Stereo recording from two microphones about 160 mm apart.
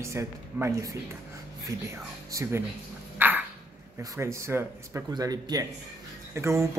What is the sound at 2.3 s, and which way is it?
Speech, 20° right (ahead or behind).